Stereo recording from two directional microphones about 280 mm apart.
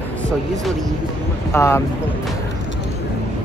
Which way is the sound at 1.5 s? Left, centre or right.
Centre.